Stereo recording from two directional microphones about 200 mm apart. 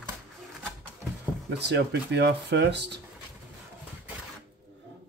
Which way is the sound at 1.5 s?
60° right (ahead or behind).